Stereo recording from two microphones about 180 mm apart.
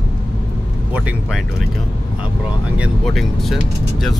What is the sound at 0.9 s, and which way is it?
Speech, 10° right (ahead or behind).